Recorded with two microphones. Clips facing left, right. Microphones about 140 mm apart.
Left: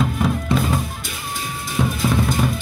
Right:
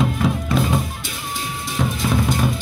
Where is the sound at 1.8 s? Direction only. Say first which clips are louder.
Left 2 dB; 10° left (ahead or behind).